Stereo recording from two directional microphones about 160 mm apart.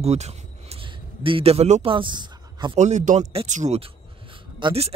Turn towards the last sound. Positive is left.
turn(degrees=-35)  # may be behind; listen again after turning